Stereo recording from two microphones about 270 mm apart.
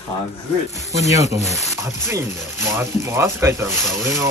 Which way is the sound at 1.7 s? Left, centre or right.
Centre.